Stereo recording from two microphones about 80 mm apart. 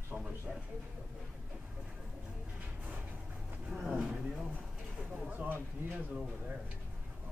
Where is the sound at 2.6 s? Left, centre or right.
Centre.